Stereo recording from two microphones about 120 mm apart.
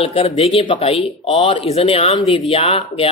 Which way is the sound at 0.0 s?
55° left (ahead or behind).